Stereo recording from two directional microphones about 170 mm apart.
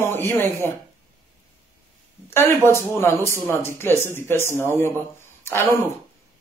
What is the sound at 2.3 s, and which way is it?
A man's voice, 15° left (ahead or behind).